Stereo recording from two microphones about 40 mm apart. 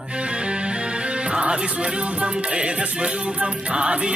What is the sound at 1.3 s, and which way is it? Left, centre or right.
Music, right.